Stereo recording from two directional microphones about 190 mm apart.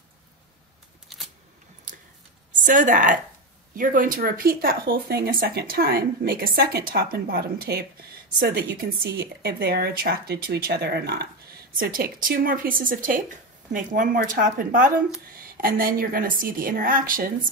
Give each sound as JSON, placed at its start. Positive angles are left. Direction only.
{"t": 1.0, "sound": "a sound", "side_deg": 0}
{"t": 2.5, "sound": "a woman's voice", "side_deg": -40}
{"t": 11.7, "sound": "a woman's voice", "side_deg": -50}